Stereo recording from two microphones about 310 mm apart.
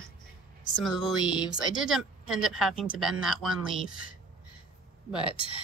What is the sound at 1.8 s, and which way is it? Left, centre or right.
Speech, centre.